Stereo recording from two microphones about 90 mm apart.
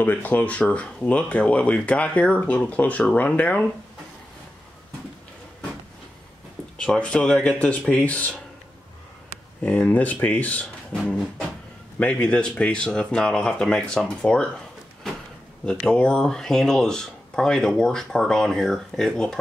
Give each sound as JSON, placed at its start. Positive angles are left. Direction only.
{"t": 0.0, "sound": "speech", "side_deg": 20}
{"t": 6.8, "sound": "speech", "side_deg": 10}
{"t": 9.6, "sound": "speech", "side_deg": 15}
{"t": 15.6, "sound": "speech", "side_deg": 10}